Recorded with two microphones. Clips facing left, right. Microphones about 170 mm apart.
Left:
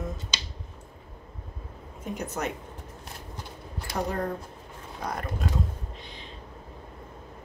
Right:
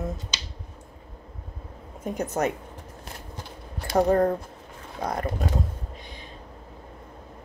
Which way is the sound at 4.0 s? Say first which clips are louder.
Right 10 dB; 45° right (ahead or behind).